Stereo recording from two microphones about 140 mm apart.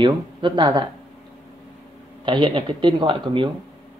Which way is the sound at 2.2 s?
35° right (ahead or behind).